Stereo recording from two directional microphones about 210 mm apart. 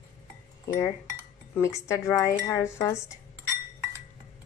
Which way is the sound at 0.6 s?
15° left (ahead or behind).